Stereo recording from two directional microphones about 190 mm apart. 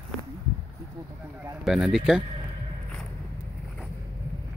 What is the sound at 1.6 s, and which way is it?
Speech, centre (ahead or behind).